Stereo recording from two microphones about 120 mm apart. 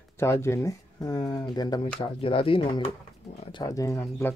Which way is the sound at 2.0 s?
50° left (ahead or behind).